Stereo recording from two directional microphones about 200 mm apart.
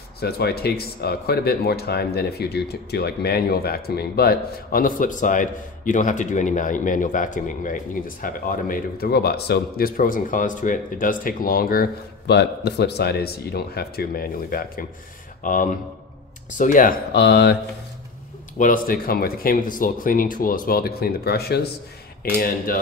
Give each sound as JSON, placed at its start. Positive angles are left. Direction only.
{"t": 0.2, "sound": "speech", "side_deg": 50}
{"t": 18.6, "sound": "speech", "side_deg": 45}